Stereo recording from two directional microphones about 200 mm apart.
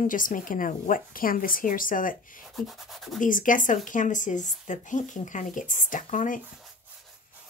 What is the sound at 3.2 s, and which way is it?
Speech, 40° left (ahead or behind).